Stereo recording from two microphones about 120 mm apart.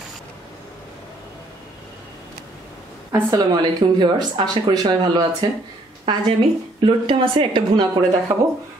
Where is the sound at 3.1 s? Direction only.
30° right (ahead or behind).